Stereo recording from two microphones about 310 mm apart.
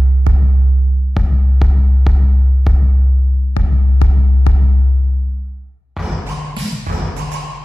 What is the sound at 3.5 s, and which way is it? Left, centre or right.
Music, left.